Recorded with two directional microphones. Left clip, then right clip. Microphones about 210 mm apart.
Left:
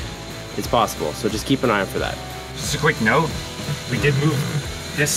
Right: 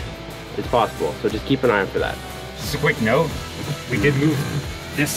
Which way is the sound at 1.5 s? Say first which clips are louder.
Right 1 dB; 60° left (ahead or behind).